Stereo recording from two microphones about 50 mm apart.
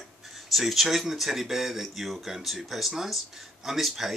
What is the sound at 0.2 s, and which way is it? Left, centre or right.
Speech, centre.